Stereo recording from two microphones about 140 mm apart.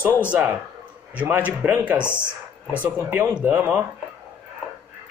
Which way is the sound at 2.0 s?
15° left (ahead or behind).